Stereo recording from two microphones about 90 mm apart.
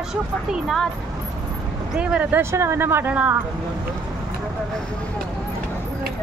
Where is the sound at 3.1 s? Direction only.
15° right (ahead or behind).